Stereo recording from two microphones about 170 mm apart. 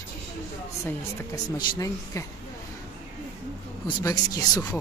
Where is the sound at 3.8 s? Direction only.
20° left (ahead or behind).